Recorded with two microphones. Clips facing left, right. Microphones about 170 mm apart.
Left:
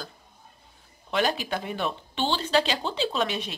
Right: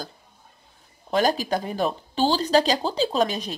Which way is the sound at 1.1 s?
40° right (ahead or behind).